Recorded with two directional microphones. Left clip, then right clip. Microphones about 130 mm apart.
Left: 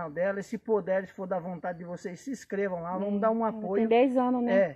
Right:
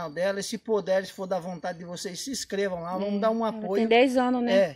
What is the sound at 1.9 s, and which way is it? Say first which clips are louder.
Speech: right 3 dB; 5° right (ahead or behind).